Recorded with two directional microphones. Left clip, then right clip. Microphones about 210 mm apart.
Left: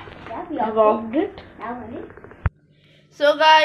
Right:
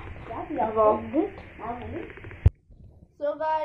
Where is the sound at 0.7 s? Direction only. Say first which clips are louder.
Left 5 dB; 15° left (ahead or behind).